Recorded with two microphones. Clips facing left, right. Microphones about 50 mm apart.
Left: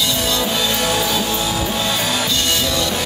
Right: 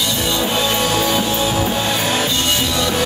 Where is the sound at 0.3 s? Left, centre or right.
Right.